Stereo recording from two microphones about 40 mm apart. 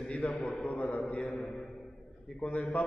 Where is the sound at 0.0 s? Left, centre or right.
Left.